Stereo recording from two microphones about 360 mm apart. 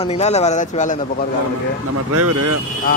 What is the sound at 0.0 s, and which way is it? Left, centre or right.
Speech, centre.